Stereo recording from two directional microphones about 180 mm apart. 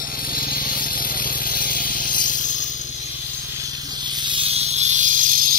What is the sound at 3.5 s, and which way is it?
Snake, 20° right (ahead or behind).